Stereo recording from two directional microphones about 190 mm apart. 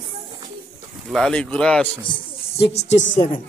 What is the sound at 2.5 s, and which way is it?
Speech, 35° left (ahead or behind).